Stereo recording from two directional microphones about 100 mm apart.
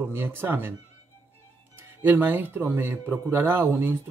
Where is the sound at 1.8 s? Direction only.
20° right (ahead or behind).